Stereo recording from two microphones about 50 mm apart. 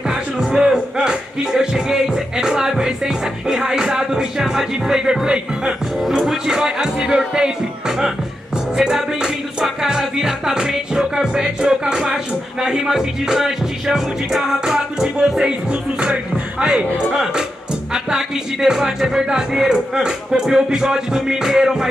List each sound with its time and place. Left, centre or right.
0.4 s music: centre
8.7 s music: centre
12.6 s speech: centre